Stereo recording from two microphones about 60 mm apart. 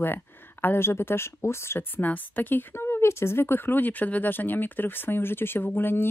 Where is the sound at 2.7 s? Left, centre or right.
Left.